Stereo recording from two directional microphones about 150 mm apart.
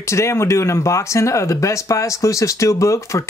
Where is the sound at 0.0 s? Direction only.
20° left (ahead or behind).